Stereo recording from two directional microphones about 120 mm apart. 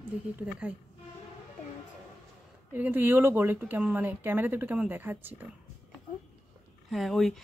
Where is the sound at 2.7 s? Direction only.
15° right (ahead or behind).